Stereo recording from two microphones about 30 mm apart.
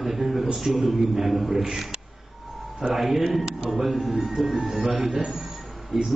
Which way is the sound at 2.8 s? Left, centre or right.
Centre.